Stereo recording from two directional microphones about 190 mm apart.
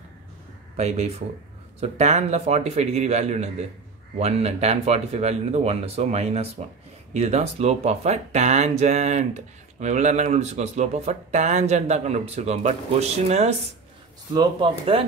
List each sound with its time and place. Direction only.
0.7 s speech: 35° right (ahead or behind)
14.3 s speech: 25° right (ahead or behind)